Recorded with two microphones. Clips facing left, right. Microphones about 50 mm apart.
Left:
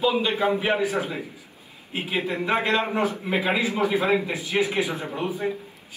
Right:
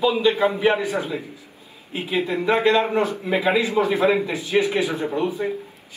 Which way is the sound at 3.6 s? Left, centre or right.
Right.